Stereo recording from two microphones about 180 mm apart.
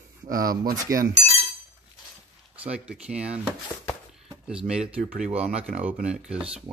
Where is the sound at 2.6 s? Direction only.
5° right (ahead or behind).